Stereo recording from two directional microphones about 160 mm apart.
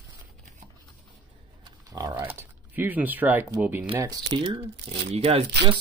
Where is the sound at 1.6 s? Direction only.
25° right (ahead or behind).